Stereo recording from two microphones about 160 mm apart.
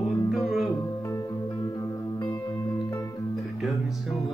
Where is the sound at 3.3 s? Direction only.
Centre (ahead or behind).